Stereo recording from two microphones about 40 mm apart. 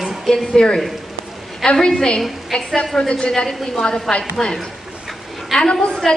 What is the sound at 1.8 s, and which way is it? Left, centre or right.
A woman's voice, left.